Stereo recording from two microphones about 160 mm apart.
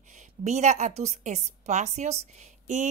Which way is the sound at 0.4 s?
45° right (ahead or behind).